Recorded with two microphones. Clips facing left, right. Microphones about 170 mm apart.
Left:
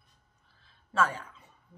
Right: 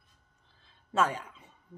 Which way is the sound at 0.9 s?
20° right (ahead or behind).